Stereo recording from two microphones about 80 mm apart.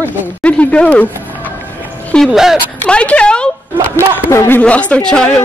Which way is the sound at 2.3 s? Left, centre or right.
Centre.